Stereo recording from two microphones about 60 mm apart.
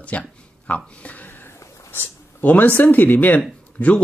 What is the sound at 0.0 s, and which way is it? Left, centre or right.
Speech, left.